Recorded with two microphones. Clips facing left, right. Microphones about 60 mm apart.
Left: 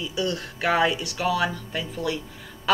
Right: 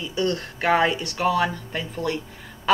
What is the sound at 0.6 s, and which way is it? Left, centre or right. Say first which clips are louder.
Speech: right 2 dB; right.